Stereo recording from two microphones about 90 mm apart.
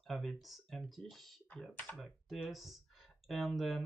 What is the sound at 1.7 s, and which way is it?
Speech, 20° left (ahead or behind).